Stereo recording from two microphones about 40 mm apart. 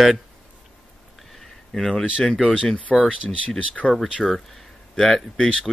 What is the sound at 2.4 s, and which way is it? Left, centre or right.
Speech, centre.